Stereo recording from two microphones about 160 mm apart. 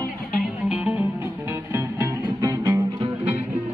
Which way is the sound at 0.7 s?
10° right (ahead or behind).